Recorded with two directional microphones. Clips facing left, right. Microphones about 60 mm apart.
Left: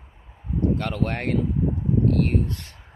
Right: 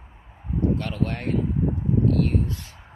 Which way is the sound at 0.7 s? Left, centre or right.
Left.